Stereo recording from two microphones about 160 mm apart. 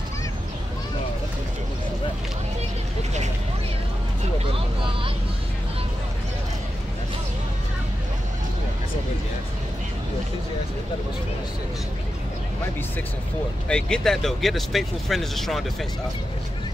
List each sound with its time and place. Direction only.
4.5 s vehicle: 35° right (ahead or behind)
13.7 s speech: 5° left (ahead or behind)